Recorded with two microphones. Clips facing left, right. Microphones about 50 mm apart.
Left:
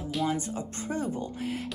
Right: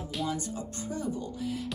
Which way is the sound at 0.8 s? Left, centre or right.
Left.